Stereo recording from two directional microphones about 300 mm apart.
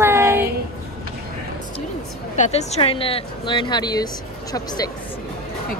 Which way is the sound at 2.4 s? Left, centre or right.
Left.